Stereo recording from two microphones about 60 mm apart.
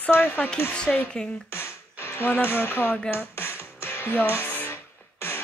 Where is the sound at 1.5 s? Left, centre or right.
Left.